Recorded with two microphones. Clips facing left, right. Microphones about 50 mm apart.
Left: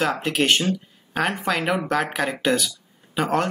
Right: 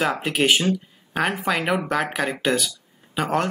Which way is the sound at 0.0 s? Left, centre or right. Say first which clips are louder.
Even; centre.